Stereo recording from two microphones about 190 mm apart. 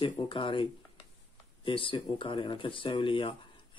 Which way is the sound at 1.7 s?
25° left (ahead or behind).